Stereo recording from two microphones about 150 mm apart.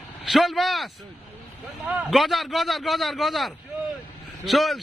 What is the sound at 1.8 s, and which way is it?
A man's voice, 5° right (ahead or behind).